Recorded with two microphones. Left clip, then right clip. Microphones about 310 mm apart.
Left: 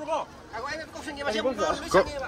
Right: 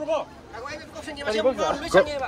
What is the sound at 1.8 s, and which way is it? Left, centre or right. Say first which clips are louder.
Speech: right 4 dB; centre.